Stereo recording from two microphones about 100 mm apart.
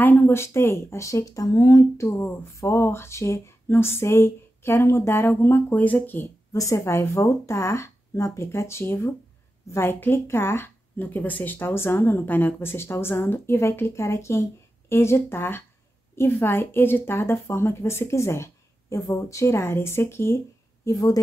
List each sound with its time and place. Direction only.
0.0 s speech: 20° left (ahead or behind)
6.5 s speech: 35° left (ahead or behind)